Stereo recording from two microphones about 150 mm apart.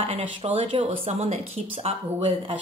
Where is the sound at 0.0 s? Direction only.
40° right (ahead or behind).